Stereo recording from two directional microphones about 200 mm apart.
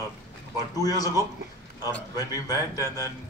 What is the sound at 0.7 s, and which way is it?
Speech, 20° left (ahead or behind).